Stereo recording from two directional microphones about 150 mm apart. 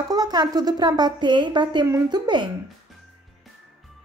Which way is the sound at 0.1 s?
25° right (ahead or behind).